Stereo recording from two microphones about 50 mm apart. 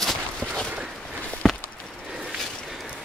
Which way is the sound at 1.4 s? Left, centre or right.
Centre.